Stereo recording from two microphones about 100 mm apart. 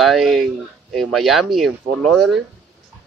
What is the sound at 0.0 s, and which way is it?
Speech, centre (ahead or behind).